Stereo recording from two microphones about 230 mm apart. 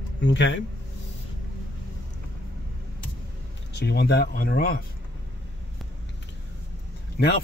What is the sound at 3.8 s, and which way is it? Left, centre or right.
Speech, left.